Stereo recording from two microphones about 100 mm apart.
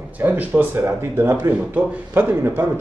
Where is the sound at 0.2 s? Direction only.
15° right (ahead or behind).